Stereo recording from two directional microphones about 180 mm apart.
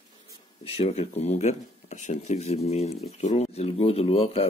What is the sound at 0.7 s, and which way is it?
Speech, 35° left (ahead or behind).